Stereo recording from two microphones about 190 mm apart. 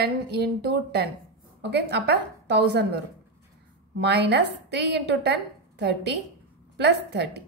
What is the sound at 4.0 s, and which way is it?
A woman's voice, 65° right (ahead or behind).